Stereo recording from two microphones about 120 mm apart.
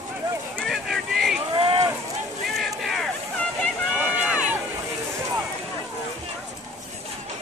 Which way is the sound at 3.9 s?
10° right (ahead or behind).